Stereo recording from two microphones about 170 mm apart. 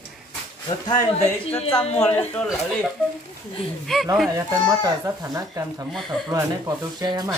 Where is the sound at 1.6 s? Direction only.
35° left (ahead or behind).